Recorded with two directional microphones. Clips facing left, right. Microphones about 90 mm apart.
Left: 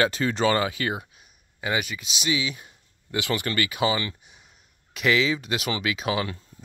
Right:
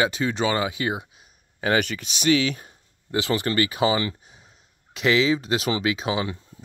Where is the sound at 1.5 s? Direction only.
55° right (ahead or behind).